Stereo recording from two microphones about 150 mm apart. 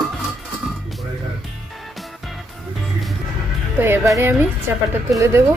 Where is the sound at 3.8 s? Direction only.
15° right (ahead or behind).